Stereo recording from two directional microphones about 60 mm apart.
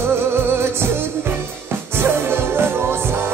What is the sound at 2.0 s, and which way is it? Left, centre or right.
Music, right.